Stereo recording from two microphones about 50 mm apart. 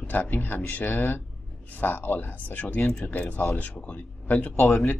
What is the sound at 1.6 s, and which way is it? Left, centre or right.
Speech, left.